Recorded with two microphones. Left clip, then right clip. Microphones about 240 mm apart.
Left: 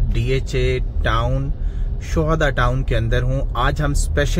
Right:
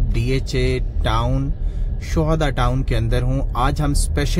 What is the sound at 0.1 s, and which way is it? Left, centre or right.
Speech, right.